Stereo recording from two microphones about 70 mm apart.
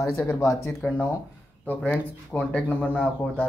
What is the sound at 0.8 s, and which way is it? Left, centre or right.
Speech, left.